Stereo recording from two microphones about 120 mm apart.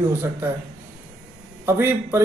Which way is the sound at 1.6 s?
20° right (ahead or behind).